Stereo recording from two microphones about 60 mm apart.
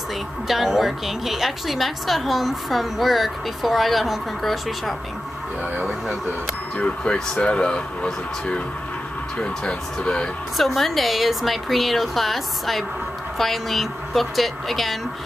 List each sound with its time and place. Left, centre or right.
0.5 s a woman's voice: centre
6.8 s speech: centre
10.6 s a woman's voice: centre